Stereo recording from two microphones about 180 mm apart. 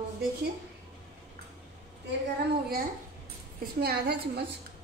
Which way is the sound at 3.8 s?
60° right (ahead or behind).